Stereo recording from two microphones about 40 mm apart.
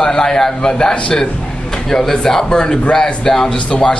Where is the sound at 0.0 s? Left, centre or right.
Centre.